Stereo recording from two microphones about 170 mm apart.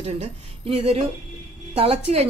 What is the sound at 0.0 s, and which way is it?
A woman's voice, 35° right (ahead or behind).